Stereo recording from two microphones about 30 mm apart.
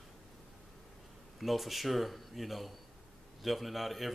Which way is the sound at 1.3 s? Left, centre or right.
Centre.